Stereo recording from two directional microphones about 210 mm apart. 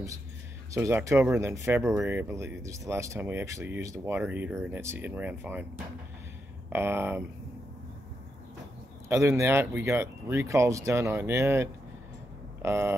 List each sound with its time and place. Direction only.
0.7 s speech: 10° right (ahead or behind)
1.8 s speech: centre (ahead or behind)
6.7 s speech: 10° right (ahead or behind)
9.1 s speech: 15° right (ahead or behind)